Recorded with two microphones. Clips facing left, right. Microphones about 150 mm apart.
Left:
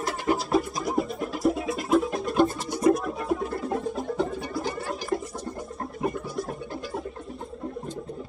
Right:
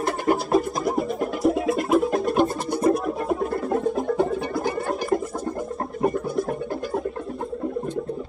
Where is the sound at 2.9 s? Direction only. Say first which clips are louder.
Right 2 dB; 50° right (ahead or behind).